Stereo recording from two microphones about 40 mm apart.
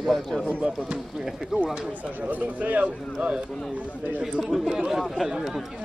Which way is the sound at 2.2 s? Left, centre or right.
Right.